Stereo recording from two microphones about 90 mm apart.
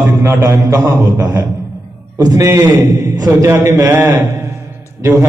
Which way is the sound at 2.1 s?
40° right (ahead or behind).